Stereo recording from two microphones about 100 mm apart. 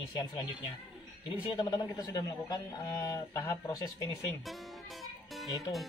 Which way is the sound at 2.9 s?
30° left (ahead or behind).